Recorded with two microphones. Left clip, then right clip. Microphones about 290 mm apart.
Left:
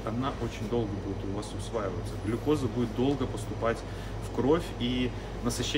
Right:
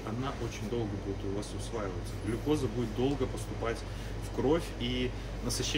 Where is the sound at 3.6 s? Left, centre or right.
Centre.